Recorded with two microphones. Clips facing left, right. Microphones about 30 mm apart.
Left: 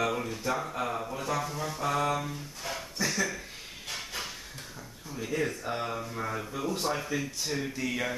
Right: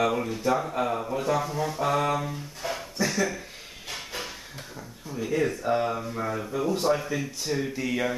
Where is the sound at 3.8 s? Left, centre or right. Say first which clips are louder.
Right 2 dB; centre.